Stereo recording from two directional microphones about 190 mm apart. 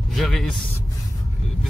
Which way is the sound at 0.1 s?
Centre (ahead or behind).